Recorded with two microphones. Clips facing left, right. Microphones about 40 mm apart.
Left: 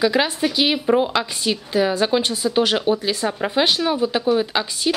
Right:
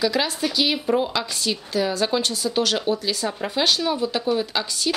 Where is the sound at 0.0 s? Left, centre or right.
Left.